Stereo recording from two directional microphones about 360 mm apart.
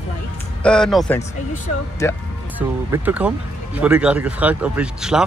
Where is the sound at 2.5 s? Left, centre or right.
Centre.